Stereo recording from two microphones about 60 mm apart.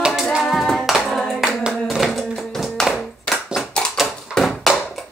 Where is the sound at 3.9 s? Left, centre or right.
Centre.